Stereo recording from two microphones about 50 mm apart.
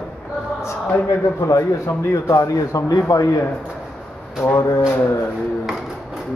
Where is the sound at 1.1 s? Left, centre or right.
Left.